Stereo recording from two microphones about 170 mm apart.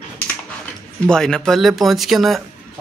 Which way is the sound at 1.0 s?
5° left (ahead or behind).